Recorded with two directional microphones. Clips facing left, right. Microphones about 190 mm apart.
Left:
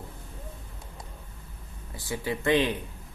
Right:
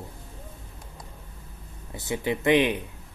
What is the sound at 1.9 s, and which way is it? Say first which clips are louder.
Speech: right 4 dB; 20° right (ahead or behind).